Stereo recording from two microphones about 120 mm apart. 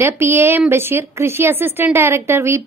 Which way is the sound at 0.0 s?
20° right (ahead or behind).